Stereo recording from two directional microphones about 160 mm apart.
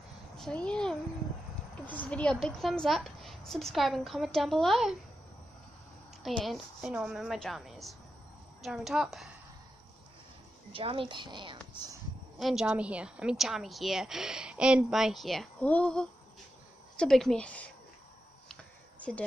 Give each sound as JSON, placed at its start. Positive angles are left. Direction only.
{"t": 0.4, "sound": "a woman's voice", "side_deg": 5}
{"t": 6.4, "sound": "a woman's voice", "side_deg": 0}
{"t": 10.7, "sound": "speech", "side_deg": -35}
{"t": 12.4, "sound": "a woman's voice", "side_deg": 0}
{"t": 18.5, "sound": "a sound", "side_deg": 5}